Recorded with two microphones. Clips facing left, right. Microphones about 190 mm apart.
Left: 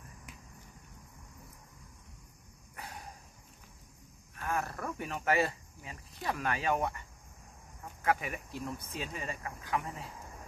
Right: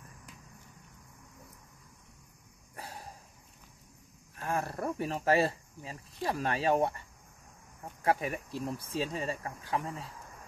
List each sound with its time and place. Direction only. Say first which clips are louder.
2.7 s a sound: right 1 dB; 35° right (ahead or behind)
4.4 s speech: right 2 dB; 30° right (ahead or behind)
8.0 s speech: right 2 dB; 35° right (ahead or behind)